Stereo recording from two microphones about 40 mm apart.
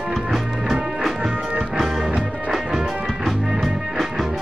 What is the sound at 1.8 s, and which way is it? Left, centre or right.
Music, centre.